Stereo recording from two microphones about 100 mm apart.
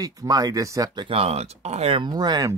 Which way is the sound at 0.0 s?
35° right (ahead or behind).